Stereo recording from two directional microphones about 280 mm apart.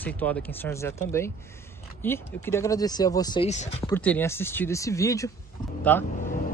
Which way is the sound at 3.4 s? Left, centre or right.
Left.